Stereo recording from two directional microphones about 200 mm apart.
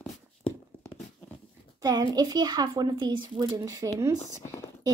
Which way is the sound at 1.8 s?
20° right (ahead or behind).